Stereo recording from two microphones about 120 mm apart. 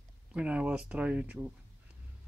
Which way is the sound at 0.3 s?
10° right (ahead or behind).